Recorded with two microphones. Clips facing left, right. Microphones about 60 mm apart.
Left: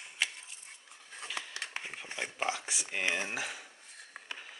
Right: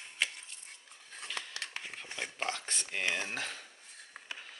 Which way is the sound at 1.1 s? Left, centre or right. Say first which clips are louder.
Left 1 dB; centre.